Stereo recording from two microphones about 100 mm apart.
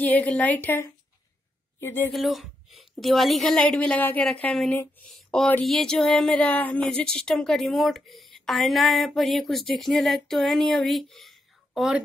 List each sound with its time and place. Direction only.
0.0 s a woman's voice: 15° left (ahead or behind)
2.1 s a woman's voice: centre (ahead or behind)
6.3 s a woman's voice: 15° left (ahead or behind); by 12.0 s 5° right (ahead or behind)